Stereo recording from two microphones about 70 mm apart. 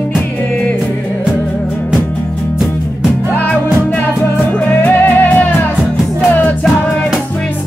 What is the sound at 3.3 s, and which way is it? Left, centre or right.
Music, left.